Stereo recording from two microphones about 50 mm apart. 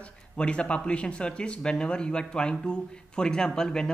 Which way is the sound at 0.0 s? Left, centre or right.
Left.